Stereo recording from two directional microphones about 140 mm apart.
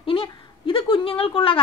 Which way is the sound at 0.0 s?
40° left (ahead or behind).